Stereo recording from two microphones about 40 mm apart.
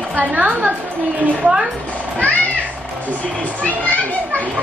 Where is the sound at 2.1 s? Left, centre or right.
Left.